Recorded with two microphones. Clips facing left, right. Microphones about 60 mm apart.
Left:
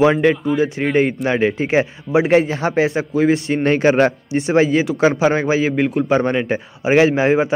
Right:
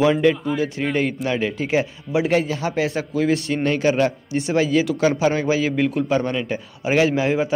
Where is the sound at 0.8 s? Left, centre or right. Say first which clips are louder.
Left 5 dB; left.